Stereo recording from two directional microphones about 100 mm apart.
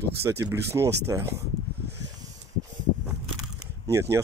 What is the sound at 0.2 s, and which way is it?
Speech, 30° right (ahead or behind).